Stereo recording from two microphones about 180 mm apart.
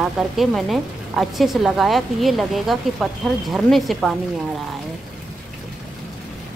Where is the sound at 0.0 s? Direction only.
Centre (ahead or behind).